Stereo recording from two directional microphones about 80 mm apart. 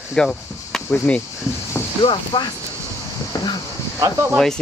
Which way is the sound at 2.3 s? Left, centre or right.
Left.